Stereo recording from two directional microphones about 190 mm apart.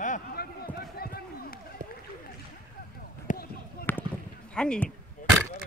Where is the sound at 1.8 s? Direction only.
45° right (ahead or behind).